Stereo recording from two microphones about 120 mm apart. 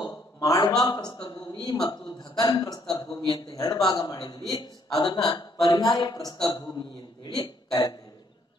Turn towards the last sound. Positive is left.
turn(degrees=35)  # may be behind; listen again after turning